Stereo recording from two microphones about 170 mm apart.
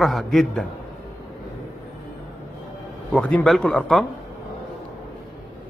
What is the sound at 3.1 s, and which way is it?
Mantra, 5° left (ahead or behind).